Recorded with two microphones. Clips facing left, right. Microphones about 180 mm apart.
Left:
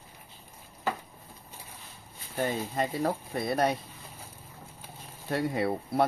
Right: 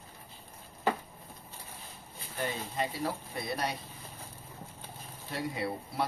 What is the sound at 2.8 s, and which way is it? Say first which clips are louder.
Speech: left 4 dB; 50° left (ahead or behind).